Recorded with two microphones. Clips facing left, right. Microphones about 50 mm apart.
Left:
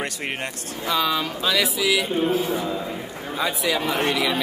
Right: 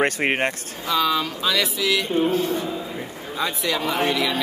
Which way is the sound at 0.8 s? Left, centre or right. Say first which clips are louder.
Right 1 dB; centre.